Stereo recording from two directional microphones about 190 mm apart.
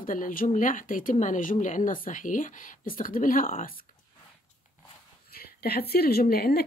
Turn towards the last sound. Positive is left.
turn(degrees=55)  # may be behind; listen again after turning